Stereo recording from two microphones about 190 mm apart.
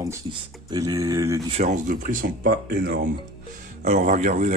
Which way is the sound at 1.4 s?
35° right (ahead or behind).